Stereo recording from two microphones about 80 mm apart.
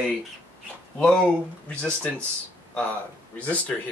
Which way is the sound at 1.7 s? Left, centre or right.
Centre.